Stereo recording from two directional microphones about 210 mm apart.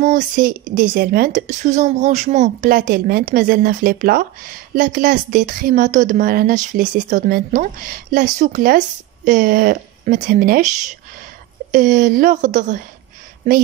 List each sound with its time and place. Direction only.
0.0 s a woman's voice: 40° right (ahead or behind)